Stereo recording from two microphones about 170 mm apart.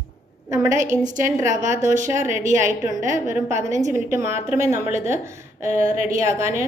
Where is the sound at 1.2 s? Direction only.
15° right (ahead or behind).